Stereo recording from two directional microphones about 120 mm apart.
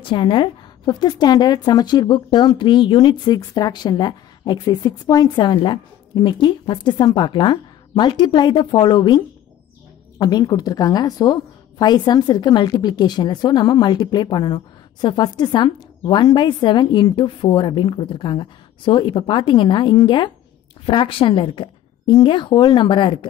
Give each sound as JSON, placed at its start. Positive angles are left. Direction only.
{"t": 0.1, "sound": "a woman's voice", "side_deg": 40}